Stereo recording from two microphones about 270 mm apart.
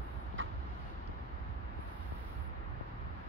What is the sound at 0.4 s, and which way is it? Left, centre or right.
Vehicle, right.